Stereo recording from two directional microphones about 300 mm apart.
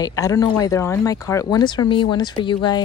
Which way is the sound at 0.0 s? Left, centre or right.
Centre.